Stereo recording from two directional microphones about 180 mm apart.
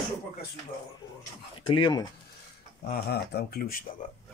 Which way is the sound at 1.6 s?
25° left (ahead or behind).